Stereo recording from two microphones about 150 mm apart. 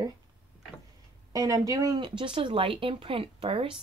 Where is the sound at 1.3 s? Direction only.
25° right (ahead or behind).